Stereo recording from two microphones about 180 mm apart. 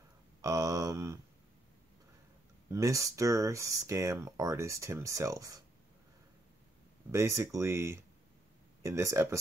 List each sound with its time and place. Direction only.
0.4 s a sound: 20° right (ahead or behind)
2.7 s speech: 15° right (ahead or behind)
7.1 s speech: 15° right (ahead or behind)